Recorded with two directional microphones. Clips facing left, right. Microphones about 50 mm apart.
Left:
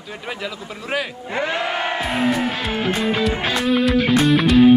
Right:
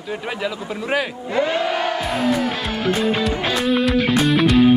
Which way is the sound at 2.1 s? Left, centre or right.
Left.